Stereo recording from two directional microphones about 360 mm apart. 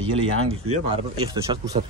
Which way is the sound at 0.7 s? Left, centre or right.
Centre.